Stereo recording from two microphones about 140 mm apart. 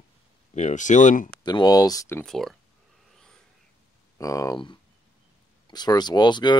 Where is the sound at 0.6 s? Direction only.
60° left (ahead or behind).